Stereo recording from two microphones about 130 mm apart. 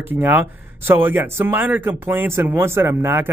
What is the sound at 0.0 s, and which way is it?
Speech, 15° right (ahead or behind).